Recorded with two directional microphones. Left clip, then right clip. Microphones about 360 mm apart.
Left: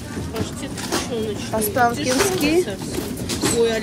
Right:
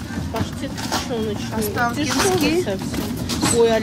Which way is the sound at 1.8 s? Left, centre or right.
Centre.